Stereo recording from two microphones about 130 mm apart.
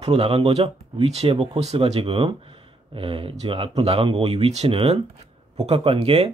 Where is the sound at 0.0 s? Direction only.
50° right (ahead or behind).